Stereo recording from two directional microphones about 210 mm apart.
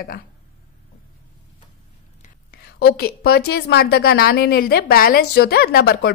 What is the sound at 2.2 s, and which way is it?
A woman's voice, 45° left (ahead or behind).